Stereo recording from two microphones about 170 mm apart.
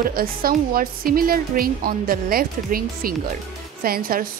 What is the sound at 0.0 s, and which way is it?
A woman's voice, 60° right (ahead or behind).